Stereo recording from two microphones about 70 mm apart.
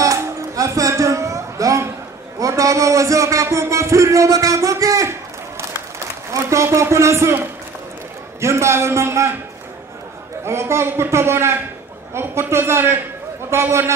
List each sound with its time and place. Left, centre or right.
0.0 s music: right
2.4 s speech: right
6.3 s speech: right
8.4 s a man's voice: right
10.4 s a man's voice: right